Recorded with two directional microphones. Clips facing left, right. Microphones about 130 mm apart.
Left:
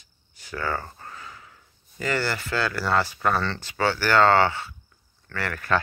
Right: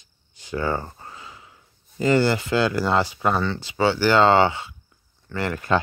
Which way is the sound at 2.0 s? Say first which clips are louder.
Right 8 dB; 25° right (ahead or behind).